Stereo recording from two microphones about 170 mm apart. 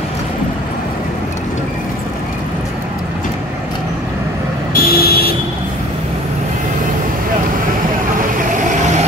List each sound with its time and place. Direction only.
4.7 s vehicle: 65° left (ahead or behind)
8.2 s vehicle: 50° right (ahead or behind)